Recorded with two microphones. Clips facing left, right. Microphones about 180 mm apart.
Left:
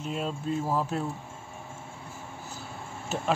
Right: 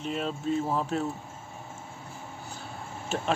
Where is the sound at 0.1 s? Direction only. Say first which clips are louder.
Right 2 dB; 5° left (ahead or behind).